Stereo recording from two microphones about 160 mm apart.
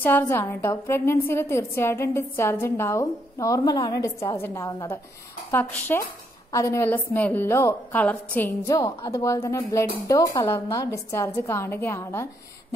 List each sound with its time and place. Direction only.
0.0 s a woman's voice: 10° left (ahead or behind)